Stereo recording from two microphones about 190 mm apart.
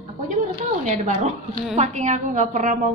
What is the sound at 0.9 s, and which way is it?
A woman's voice, 35° right (ahead or behind).